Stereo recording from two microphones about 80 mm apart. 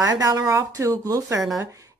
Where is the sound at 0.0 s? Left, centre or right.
Right.